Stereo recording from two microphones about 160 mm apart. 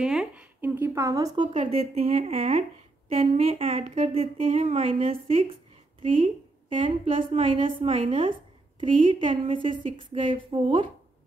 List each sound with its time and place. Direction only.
0.0 s a woman's voice: 5° right (ahead or behind); by 10.9 s 35° right (ahead or behind)